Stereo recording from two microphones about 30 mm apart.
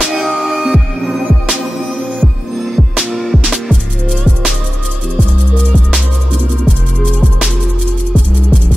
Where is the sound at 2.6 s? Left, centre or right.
Centre.